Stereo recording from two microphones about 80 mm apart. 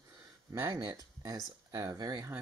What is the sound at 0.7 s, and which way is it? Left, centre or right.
Speech, right.